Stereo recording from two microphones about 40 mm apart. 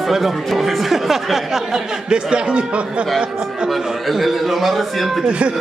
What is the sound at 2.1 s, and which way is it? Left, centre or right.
Speech, right.